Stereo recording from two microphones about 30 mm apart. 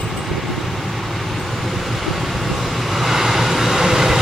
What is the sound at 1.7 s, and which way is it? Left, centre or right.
Vehicle, centre.